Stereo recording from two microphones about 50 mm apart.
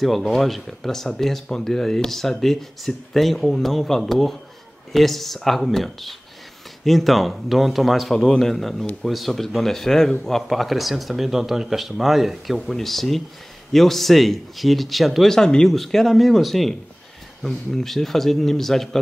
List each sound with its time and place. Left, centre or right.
0.0 s speech: centre
15.3 s speech: centre